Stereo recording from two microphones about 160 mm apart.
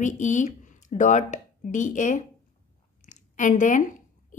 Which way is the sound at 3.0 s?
50° left (ahead or behind).